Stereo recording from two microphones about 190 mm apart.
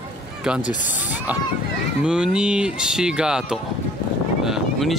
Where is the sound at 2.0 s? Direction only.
5° right (ahead or behind).